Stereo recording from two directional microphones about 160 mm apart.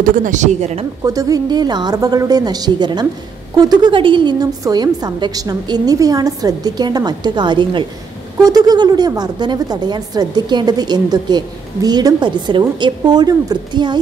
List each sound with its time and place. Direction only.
0.0 s speech: 55° right (ahead or behind)
1.0 s a woman's voice: 20° right (ahead or behind)